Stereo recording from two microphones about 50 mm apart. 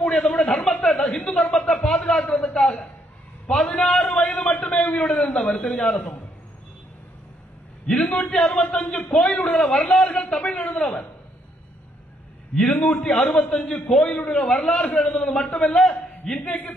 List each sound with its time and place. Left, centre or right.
0.0 s a sound: centre
5.5 s a man's voice: centre
7.8 s a man's voice: centre
9.9 s a sound: left
12.5 s a man's voice: centre
13.5 s a man's voice: centre